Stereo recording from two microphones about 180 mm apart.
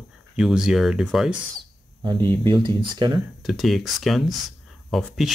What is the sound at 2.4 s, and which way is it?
Speech, 25° right (ahead or behind).